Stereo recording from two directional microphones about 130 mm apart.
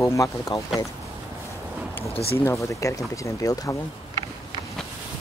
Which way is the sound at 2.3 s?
20° left (ahead or behind).